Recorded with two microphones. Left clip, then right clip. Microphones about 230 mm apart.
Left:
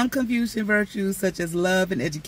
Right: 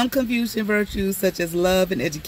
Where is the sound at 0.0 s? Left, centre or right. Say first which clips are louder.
Right 2 dB; centre.